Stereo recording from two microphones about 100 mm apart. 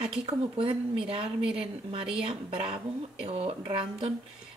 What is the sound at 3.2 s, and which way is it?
Speech, 85° right.